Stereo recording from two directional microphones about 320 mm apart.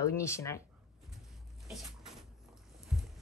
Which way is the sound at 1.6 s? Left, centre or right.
Centre.